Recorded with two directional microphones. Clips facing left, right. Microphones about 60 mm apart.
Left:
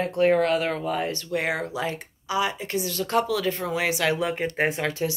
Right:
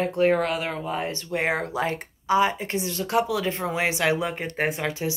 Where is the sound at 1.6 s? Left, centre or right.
Right.